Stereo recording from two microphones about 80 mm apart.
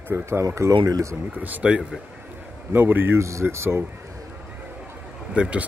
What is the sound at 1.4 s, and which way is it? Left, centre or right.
Speech, centre.